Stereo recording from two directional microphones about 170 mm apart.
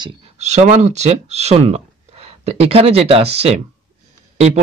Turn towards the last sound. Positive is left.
turn(degrees=-40)  # may be behind; listen again after turning